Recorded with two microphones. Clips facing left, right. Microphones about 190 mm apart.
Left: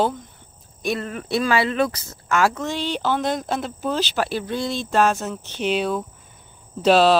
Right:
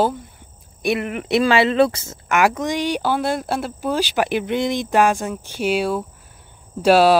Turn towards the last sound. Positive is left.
turn(degrees=-10)  # may be behind; listen again after turning